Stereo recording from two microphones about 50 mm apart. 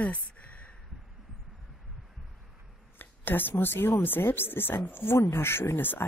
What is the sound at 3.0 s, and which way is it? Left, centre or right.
A woman's voice, left.